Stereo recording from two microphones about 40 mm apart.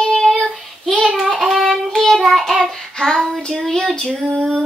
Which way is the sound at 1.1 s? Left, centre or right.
Centre.